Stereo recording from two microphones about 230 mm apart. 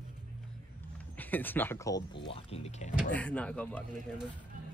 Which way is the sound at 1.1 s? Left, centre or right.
Centre.